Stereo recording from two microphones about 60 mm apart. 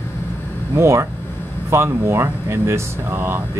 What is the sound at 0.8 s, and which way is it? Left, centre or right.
Speech, right.